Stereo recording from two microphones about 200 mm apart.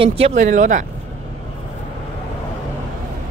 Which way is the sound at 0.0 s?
35° right (ahead or behind).